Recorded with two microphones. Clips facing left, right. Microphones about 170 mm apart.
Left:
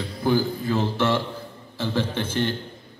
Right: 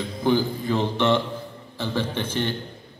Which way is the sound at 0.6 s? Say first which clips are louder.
Even; 15° right (ahead or behind).